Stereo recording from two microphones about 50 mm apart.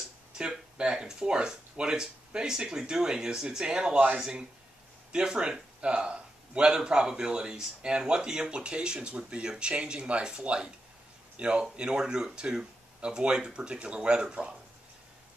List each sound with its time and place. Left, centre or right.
0.4 s a man's voice: centre